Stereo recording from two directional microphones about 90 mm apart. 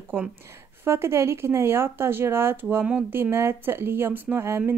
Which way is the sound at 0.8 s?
30° right (ahead or behind).